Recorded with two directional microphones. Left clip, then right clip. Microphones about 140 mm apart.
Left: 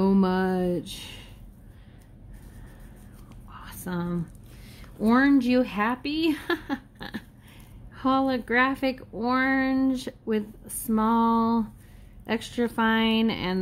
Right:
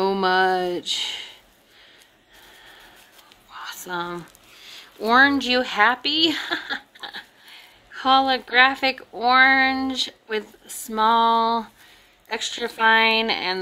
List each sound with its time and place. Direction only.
0.0 s speech: 25° right (ahead or behind)
3.5 s a sound: 30° right (ahead or behind)
4.7 s speech: 35° right (ahead or behind)